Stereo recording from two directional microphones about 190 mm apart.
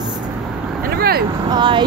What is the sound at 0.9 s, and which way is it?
Speech, 55° right (ahead or behind).